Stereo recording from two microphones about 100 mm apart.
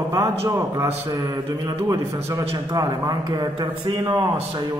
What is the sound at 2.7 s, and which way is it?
A man's voice, 40° right (ahead or behind).